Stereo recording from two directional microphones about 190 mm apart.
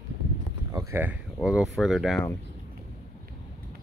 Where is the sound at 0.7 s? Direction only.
15° right (ahead or behind).